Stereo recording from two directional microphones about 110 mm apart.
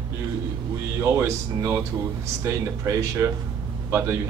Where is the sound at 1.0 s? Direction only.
25° right (ahead or behind).